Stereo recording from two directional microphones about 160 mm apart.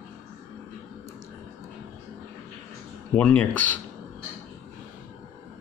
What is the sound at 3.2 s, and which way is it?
Speech, 10° left (ahead or behind).